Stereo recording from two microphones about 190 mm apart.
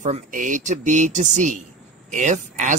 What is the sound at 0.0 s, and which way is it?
Speech, 40° right (ahead or behind).